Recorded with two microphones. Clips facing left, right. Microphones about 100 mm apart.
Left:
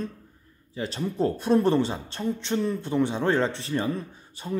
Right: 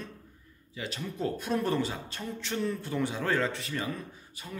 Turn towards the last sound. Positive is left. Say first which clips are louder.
# left 11 dB
turn(degrees=25)  # may be behind; listen again after turning